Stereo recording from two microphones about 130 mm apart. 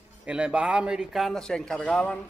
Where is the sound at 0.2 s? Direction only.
10° right (ahead or behind).